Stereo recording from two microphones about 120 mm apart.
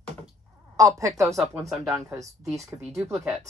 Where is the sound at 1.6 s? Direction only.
Centre (ahead or behind).